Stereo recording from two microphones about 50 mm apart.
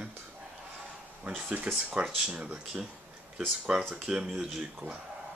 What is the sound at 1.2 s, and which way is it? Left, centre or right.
Speech, right.